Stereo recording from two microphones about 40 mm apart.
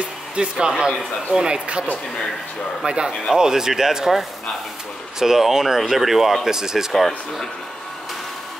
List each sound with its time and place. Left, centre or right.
0.4 s speech: right
6.9 s speech: centre